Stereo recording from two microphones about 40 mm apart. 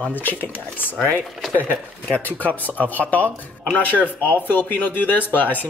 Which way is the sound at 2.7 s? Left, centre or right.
Left.